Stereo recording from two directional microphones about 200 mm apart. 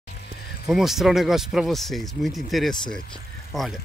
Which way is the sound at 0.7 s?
Centre (ahead or behind).